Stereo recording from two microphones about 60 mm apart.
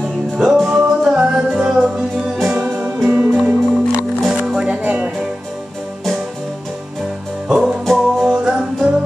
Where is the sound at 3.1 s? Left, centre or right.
Right.